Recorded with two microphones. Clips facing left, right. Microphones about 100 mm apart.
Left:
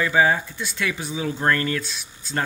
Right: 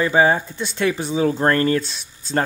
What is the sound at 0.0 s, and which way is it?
Speech, 30° right (ahead or behind).